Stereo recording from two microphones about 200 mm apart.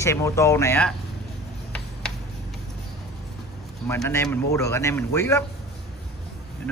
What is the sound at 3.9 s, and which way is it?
Speech, 15° left (ahead or behind).